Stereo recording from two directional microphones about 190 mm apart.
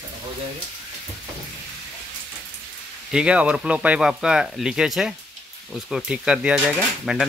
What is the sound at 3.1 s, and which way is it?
Speech, 5° right (ahead or behind).